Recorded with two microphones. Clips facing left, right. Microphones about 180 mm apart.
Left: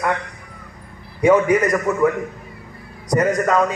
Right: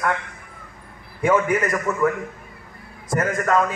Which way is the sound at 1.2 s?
15° left (ahead or behind).